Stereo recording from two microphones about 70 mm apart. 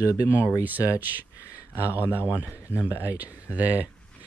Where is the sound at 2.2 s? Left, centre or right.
Left.